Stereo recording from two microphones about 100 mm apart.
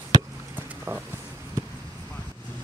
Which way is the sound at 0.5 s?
20° right (ahead or behind).